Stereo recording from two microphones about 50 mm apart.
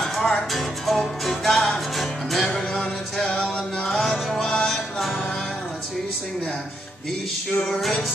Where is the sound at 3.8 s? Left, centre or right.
Centre.